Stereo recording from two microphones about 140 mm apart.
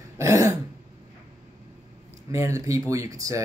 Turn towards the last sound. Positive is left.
turn(degrees=-25)  # may be behind; listen again after turning